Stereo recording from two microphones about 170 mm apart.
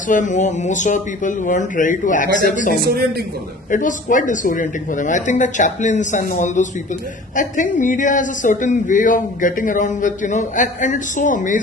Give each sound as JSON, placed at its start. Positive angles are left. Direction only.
{"t": 0.1, "sound": "a man's voice", "side_deg": 45}
{"t": 2.8, "sound": "speech", "side_deg": -65}
{"t": 3.7, "sound": "a man's voice", "side_deg": 50}